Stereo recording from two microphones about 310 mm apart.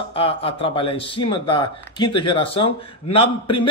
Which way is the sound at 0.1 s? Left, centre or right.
Centre.